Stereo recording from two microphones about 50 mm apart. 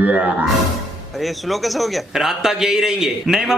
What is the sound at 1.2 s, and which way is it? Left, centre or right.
Speech, centre.